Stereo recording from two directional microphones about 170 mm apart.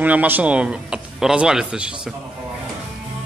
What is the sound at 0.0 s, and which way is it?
A man's voice, 10° right (ahead or behind).